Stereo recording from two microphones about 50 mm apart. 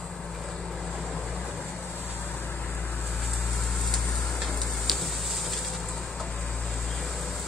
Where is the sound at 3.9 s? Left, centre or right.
Centre.